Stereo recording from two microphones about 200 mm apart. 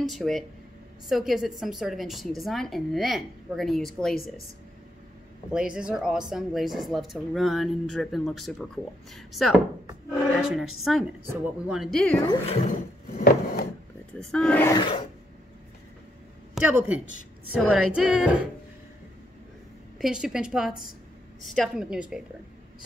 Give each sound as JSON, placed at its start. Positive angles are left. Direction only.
{"t": 0.0, "sound": "speech", "side_deg": 0}
{"t": 4.1, "sound": "speech", "side_deg": 50}
{"t": 5.5, "sound": "speech", "side_deg": -5}
{"t": 12.2, "sound": "speech", "side_deg": 25}
{"t": 13.2, "sound": "a sound", "side_deg": 45}
{"t": 14.3, "sound": "speech", "side_deg": 5}
{"t": 14.7, "sound": "speech", "side_deg": 25}
{"t": 16.5, "sound": "a woman's voice", "side_deg": -5}
{"t": 20.0, "sound": "speech", "side_deg": -5}